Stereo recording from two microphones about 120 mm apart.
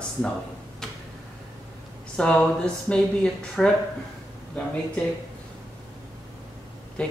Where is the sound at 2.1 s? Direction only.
10° left (ahead or behind).